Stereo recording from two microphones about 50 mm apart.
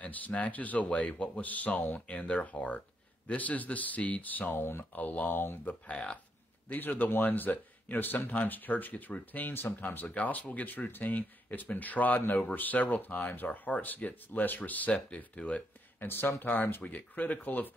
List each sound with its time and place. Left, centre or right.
0.0 s speech: left
9.8 s speech: left
16.0 s speech: left